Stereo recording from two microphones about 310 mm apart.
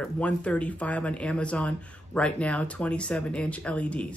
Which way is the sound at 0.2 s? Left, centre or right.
Centre.